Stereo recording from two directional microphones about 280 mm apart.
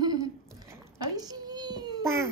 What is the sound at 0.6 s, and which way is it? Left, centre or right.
Babbling, centre.